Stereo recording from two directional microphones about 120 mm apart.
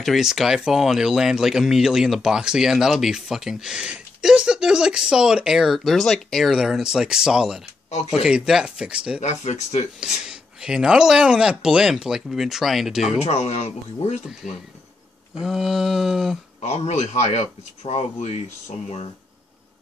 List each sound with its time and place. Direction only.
0.0 s speech: centre (ahead or behind)
9.2 s speech: 70° left (ahead or behind)
9.9 s speech: 5° right (ahead or behind)
13.2 s speech: 60° left (ahead or behind)
15.4 s speech: centre (ahead or behind)
16.6 s speech: 65° left (ahead or behind)